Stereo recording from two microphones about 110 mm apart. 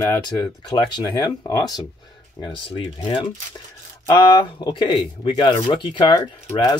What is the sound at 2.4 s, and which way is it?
Speech, 50° left (ahead or behind).